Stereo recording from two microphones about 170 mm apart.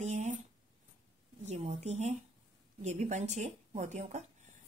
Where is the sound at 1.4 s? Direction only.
40° right (ahead or behind).